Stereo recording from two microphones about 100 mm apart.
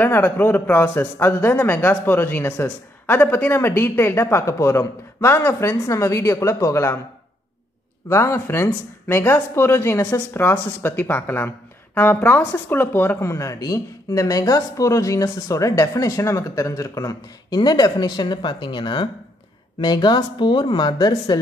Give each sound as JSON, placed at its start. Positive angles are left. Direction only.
{"t": 0.0, "sound": "speech", "side_deg": 20}
{"t": 8.1, "sound": "speech", "side_deg": 25}